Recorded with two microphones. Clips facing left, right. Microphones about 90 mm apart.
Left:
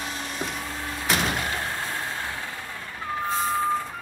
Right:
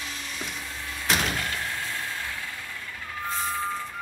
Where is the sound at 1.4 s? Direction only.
35° left (ahead or behind).